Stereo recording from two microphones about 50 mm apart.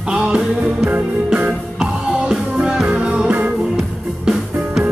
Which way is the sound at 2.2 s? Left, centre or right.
Centre.